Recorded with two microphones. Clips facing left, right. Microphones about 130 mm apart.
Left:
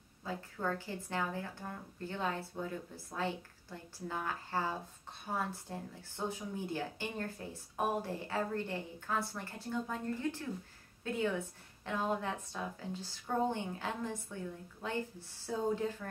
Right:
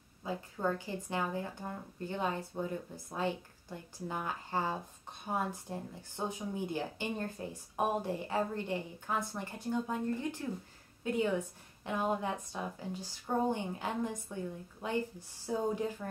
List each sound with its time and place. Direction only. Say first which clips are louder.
0.2 s a woman's voice: right 3 dB; 15° right (ahead or behind)
11.1 s a woman's voice: right 3 dB; 15° right (ahead or behind)